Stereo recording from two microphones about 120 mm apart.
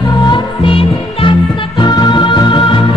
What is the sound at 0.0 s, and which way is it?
Music, 40° left (ahead or behind).